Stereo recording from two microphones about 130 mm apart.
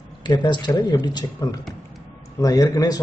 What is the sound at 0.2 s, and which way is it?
A man's voice, 35° left (ahead or behind).